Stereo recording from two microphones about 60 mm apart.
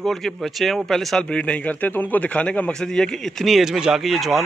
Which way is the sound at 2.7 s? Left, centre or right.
Centre.